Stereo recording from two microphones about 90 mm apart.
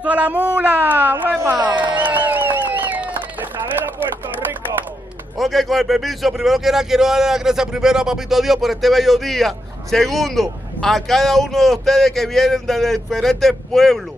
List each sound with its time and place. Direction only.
0.0 s speech: 15° right (ahead or behind)
2.0 s music: 20° right (ahead or behind)
5.4 s a man's voice: centre (ahead or behind)